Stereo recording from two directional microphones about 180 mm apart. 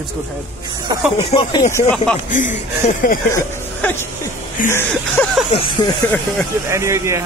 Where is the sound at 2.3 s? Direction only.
45° left (ahead or behind).